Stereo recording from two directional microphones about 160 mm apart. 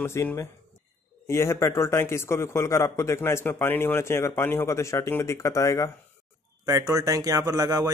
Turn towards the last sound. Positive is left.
turn(degrees=-25)  # may be behind; listen again after turning